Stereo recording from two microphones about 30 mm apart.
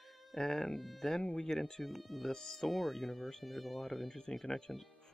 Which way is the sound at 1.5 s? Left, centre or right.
Centre.